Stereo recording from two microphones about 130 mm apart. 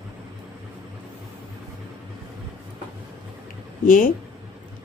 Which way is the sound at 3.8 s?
90° left.